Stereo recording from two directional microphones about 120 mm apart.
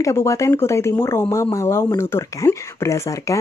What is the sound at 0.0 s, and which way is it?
Speech, 25° left (ahead or behind).